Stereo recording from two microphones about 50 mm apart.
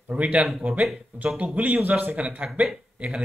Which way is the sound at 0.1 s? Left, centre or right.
Right.